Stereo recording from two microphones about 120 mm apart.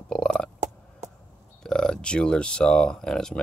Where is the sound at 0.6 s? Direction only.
75° right (ahead or behind).